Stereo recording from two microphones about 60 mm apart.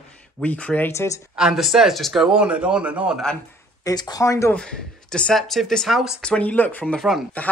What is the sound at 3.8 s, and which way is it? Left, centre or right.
Speech, left.